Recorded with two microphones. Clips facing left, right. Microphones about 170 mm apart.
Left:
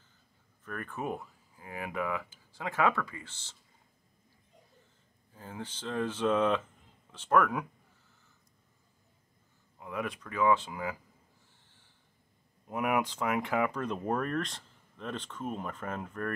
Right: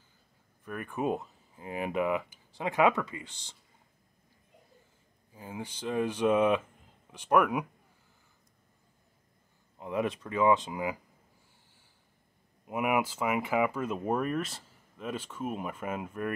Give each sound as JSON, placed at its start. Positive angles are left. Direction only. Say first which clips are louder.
{"t": 0.7, "sound": "speech", "louder": "right 5 dB", "side_deg": -15}
{"t": 5.3, "sound": "speech", "louder": "right 2 dB", "side_deg": -10}
{"t": 9.8, "sound": "speech", "louder": "right 5 dB", "side_deg": -25}
{"t": 12.6, "sound": "speech", "louder": "right 1 dB", "side_deg": -5}